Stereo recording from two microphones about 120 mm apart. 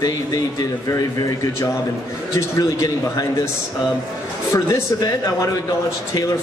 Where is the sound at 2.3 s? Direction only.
25° left (ahead or behind).